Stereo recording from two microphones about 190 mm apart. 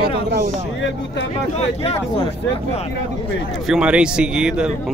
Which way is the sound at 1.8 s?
30° left (ahead or behind).